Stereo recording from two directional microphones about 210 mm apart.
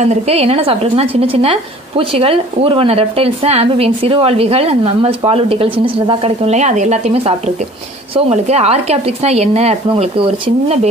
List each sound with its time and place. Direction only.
0.0 s speech: 30° right (ahead or behind)